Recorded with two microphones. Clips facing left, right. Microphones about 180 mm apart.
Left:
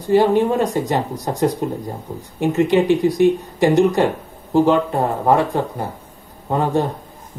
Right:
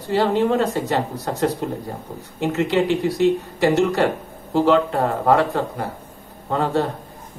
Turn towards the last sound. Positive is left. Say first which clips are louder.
# left 2 dB
turn(degrees=15)  # may be behind; listen again after turning